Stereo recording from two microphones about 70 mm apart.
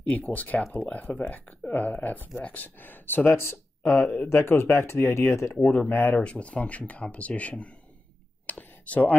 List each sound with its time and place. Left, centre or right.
0.0 s speech: left
5.5 s speech: left
6.2 s speech: centre
8.5 s a sound: left